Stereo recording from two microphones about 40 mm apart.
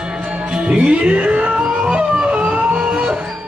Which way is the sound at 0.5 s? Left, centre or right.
Right.